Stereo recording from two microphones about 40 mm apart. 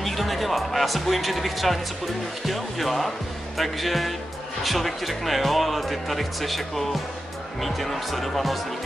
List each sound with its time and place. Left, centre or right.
0.0 s speech: centre